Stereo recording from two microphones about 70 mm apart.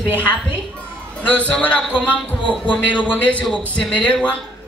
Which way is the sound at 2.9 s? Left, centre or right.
Left.